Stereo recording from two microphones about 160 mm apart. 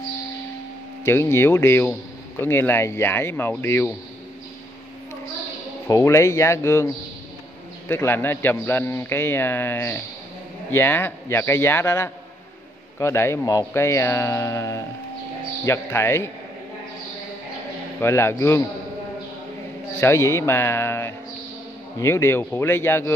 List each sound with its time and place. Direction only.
1.0 s a man's voice: 15° left (ahead or behind)
5.9 s a man's voice: 20° left (ahead or behind)
7.9 s a man's voice: 15° left (ahead or behind)
18.0 s a man's voice: 15° left (ahead or behind)
20.0 s a man's voice: 20° left (ahead or behind)